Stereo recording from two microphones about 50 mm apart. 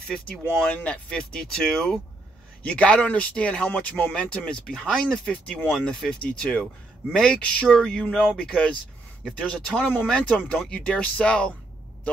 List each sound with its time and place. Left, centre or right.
0.1 s speech: centre
0.7 s speech: left
1.0 s speech: centre
1.6 s speech: centre
2.6 s speech: left
4.1 s speech: centre